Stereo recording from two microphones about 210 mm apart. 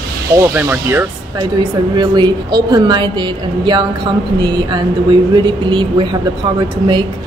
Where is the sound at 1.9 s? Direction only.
20° right (ahead or behind).